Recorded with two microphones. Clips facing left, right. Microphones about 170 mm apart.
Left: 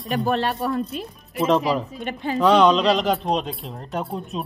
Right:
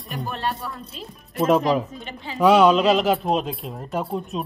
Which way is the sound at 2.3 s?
5° right (ahead or behind).